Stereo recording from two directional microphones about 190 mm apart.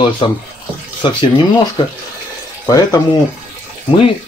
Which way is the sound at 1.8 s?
25° left (ahead or behind).